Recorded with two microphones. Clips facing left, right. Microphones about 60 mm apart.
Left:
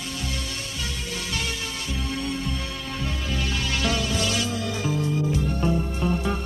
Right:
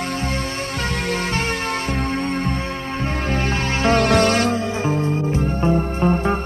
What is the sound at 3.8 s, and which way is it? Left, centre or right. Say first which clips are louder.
Music: right 12 dB; right.